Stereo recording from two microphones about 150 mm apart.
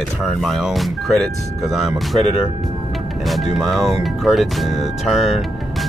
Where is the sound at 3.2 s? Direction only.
Centre (ahead or behind).